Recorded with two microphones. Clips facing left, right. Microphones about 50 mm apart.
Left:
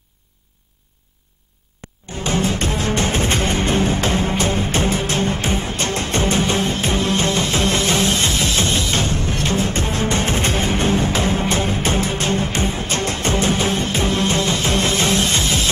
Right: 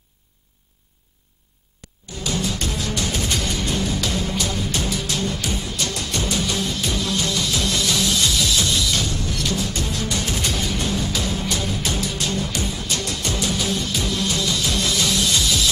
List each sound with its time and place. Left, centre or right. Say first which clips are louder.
1.8 s music: left 4 dB; left